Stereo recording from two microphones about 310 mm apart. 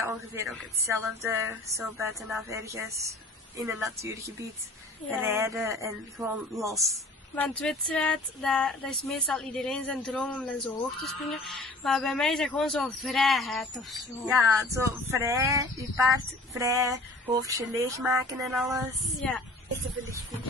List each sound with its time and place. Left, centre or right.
0.0 s a woman's voice: centre